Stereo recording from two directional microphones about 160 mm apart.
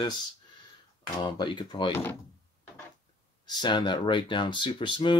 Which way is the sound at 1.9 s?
15° left (ahead or behind).